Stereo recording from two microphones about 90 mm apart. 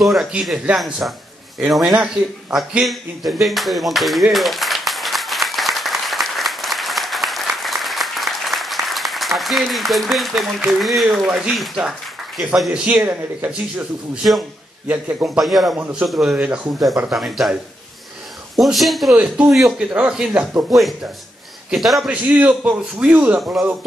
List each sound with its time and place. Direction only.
0.0 s speech: centre (ahead or behind)
3.3 s a sound: centre (ahead or behind)
10.8 s speech: centre (ahead or behind)
11.2 s speech: 10° right (ahead or behind)
13.0 s speech: 20° right (ahead or behind)
14.9 s speech: 15° right (ahead or behind)
15.3 s speech: centre (ahead or behind)
16.3 s speech: 15° right (ahead or behind)
17.1 s speech: 5° right (ahead or behind)
18.6 s speech: centre (ahead or behind)
19.1 s speech: 10° right (ahead or behind)
22.1 s speech: 10° right (ahead or behind)